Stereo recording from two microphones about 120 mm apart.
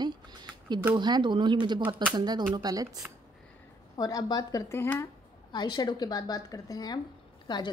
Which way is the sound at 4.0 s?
30° left (ahead or behind).